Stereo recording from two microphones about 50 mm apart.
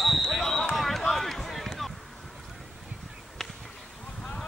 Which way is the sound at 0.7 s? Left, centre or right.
Centre.